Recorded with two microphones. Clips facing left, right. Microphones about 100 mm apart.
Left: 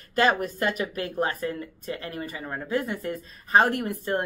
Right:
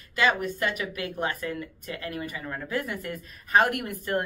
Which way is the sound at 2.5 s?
20° left (ahead or behind).